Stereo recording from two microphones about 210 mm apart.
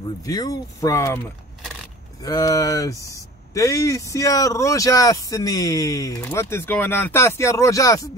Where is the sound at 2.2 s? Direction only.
15° left (ahead or behind).